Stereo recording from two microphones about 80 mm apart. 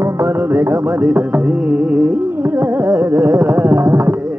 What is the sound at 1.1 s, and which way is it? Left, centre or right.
Music, centre.